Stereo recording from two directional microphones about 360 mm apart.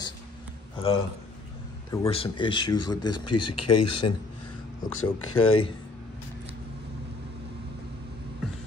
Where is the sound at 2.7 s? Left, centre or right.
Left.